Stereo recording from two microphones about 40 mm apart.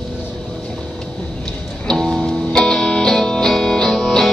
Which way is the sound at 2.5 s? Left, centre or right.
Centre.